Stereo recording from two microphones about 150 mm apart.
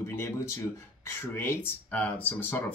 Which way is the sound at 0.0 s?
15° left (ahead or behind).